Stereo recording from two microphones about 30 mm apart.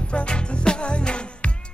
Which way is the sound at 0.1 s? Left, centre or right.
Left.